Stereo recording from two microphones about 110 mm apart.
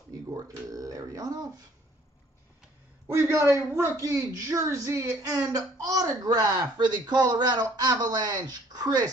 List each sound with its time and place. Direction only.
0.3 s speech: 30° right (ahead or behind)
3.1 s speech: 25° right (ahead or behind)